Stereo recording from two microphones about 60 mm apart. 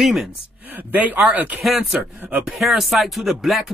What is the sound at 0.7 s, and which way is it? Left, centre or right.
Speech, right.